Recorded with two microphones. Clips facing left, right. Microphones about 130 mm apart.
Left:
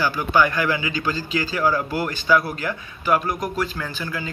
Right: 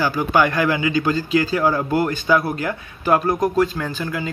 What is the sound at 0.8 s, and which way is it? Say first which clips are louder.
Speech: right 6 dB; 50° right (ahead or behind).